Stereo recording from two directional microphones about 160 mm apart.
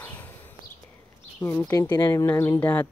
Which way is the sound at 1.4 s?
15° left (ahead or behind).